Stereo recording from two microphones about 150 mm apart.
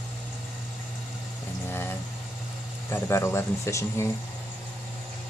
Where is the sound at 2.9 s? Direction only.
20° left (ahead or behind).